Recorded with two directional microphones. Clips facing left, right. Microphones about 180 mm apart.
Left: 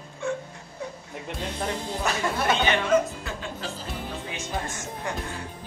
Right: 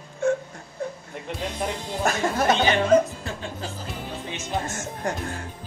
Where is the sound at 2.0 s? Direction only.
40° right (ahead or behind).